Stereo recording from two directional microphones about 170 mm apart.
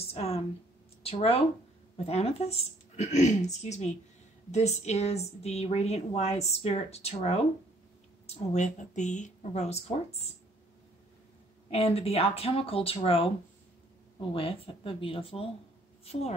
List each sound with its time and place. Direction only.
0.0 s a woman's voice: 35° left (ahead or behind)
8.5 s speech: 45° left (ahead or behind)
11.7 s a woman's voice: 35° left (ahead or behind)
14.3 s a woman's voice: 35° left (ahead or behind)